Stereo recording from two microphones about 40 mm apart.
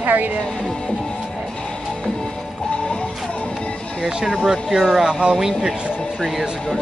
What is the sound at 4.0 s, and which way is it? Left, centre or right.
Speech, centre.